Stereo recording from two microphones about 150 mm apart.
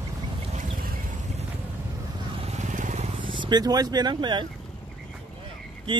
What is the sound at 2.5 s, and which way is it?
Vehicle, 55° right (ahead or behind).